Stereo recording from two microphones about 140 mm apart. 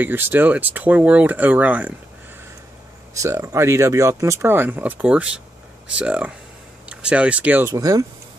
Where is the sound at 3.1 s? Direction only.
20° right (ahead or behind).